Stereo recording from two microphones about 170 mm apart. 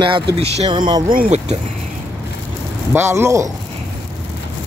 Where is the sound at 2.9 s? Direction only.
15° right (ahead or behind).